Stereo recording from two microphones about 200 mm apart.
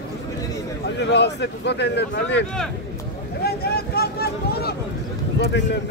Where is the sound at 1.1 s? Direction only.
60° left (ahead or behind).